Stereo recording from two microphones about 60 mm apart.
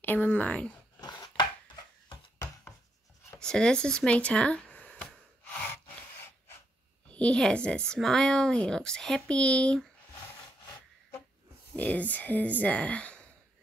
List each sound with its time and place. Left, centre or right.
0.0 s speech: left
3.3 s speech: centre
7.1 s a sound: left
7.4 s speech: centre
11.7 s speech: left